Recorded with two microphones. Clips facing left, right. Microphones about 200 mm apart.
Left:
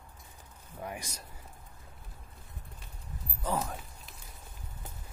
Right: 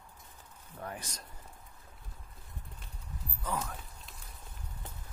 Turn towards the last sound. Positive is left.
turn(degrees=30)  # may be behind; listen again after turning